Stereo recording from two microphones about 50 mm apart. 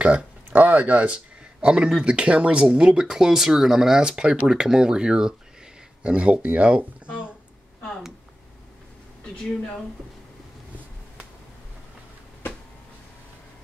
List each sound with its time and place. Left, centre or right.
0.0 s speech: right